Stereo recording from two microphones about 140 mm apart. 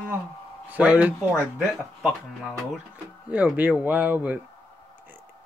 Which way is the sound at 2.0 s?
Centre (ahead or behind).